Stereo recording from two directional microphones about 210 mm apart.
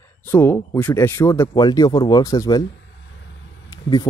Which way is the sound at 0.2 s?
10° left (ahead or behind).